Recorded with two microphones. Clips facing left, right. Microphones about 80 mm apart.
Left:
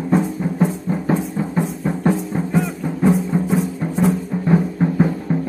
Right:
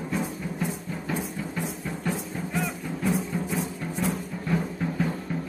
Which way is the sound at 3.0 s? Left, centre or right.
Left.